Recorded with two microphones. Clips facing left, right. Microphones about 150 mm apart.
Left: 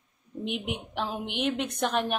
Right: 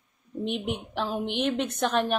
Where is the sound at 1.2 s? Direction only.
10° left (ahead or behind).